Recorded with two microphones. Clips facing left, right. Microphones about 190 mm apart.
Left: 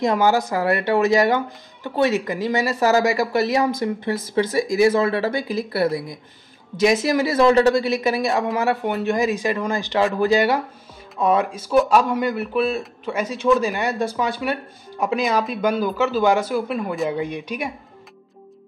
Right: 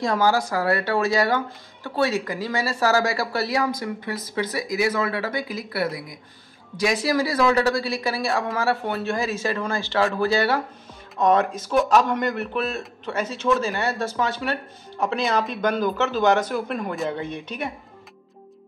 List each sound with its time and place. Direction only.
0.0 s speech: 20° left (ahead or behind)